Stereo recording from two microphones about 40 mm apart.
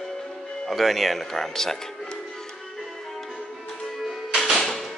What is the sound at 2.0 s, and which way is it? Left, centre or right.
Music, centre.